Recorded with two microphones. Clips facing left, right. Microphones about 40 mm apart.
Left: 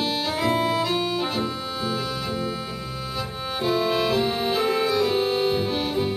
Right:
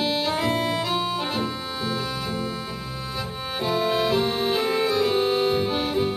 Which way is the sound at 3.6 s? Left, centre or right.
Centre.